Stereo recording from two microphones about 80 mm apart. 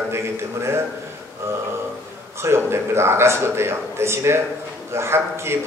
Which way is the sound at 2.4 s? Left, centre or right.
Right.